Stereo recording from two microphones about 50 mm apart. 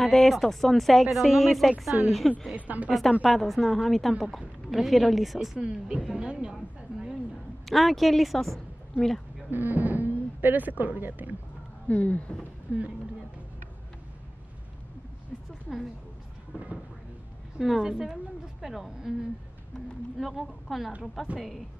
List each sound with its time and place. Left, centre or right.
0.0 s speech: centre
2.5 s a woman's voice: right
3.3 s speech: centre
5.6 s a woman's voice: centre
6.5 s a sound: centre
7.6 s a woman's voice: centre
9.5 s speech: right
11.9 s speech: left
12.7 s a woman's voice: right
16.5 s a sound: right
17.6 s speech: centre
17.9 s a woman's voice: centre
20.2 s speech: centre